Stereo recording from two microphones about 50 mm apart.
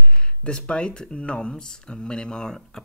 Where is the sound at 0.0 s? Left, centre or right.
Centre.